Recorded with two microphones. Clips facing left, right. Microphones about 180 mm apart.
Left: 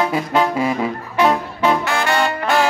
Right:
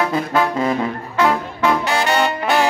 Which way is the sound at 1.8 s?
15° right (ahead or behind).